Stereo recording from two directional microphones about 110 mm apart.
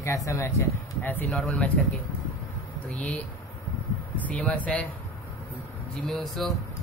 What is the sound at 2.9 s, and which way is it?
Speech, 15° left (ahead or behind).